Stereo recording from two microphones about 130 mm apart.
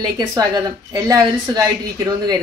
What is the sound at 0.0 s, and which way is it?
A woman's voice, 30° right (ahead or behind).